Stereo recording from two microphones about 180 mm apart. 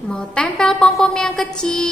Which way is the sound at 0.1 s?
5° left (ahead or behind).